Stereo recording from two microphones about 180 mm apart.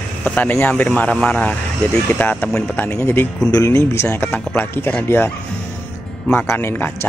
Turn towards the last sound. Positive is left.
turn(degrees=10)  # may be behind; listen again after turning